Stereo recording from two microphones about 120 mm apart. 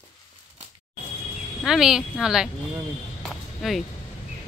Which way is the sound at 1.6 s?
5° right (ahead or behind).